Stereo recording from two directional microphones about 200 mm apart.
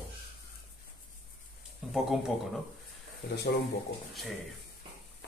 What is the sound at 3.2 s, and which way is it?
Speech, 50° left (ahead or behind).